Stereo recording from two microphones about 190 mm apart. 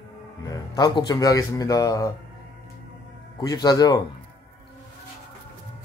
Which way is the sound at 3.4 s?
20° left (ahead or behind).